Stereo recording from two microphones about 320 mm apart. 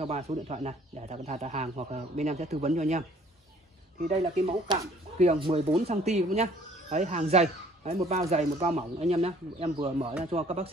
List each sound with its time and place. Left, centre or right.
0.0 s speech: centre
4.1 s speech: centre